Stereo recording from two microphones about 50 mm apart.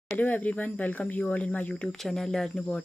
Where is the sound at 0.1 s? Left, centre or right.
Left.